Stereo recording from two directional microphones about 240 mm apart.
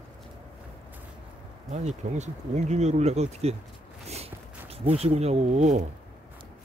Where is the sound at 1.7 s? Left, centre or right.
Right.